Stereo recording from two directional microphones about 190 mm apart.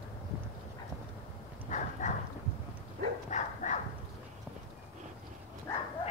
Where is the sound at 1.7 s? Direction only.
40° left (ahead or behind).